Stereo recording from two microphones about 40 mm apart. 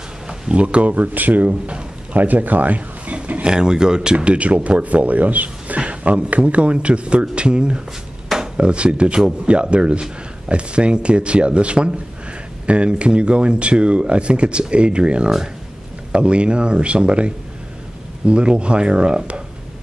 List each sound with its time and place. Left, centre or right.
0.3 s speech: right
3.4 s speech: right